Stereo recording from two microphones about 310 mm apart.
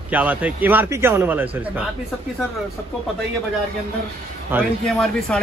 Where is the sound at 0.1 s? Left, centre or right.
Centre.